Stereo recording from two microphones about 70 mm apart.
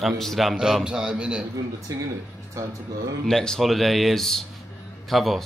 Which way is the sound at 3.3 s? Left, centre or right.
Centre.